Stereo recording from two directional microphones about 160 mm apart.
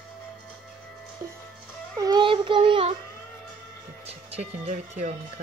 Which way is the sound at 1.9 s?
25° right (ahead or behind).